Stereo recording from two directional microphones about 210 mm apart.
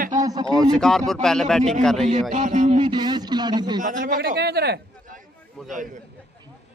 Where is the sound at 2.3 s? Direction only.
35° right (ahead or behind).